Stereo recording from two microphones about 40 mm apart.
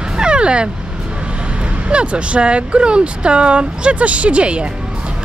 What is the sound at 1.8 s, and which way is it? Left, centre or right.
Speech, right.